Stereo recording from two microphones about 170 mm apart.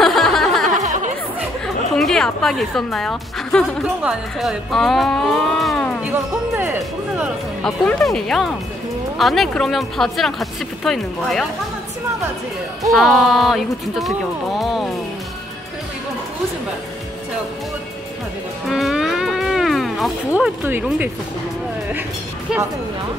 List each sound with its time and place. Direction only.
0.0 s a sound: centre (ahead or behind)
0.7 s music: 45° right (ahead or behind)
2.0 s a woman's voice: 5° left (ahead or behind)
6.0 s speech: 10° right (ahead or behind)
7.6 s a woman's voice: 5° left (ahead or behind)
12.9 s a woman's voice: centre (ahead or behind)
18.7 s music: centre (ahead or behind)
20.3 s speech: 10° right (ahead or behind)